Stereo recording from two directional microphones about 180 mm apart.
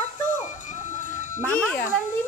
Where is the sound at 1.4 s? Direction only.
10° left (ahead or behind).